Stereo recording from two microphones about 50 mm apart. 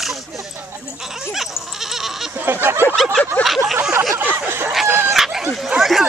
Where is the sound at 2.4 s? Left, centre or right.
Right.